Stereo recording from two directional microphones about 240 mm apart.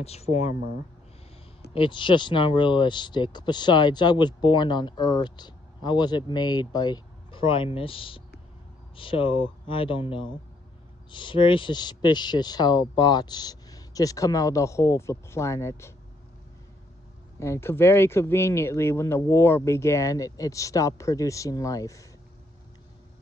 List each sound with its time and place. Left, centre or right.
0.0 s speech: left
1.7 s a man's voice: left
17.4 s a man's voice: centre